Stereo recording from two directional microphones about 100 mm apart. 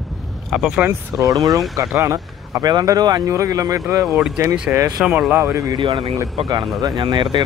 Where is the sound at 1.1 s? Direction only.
35° right (ahead or behind).